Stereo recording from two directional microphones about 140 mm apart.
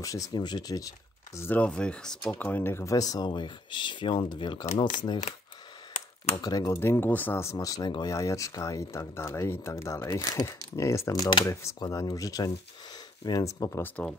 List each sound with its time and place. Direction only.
0.0 s speech: 25° left (ahead or behind)
5.9 s a sound: 50° left (ahead or behind)
6.4 s speech: 25° left (ahead or behind)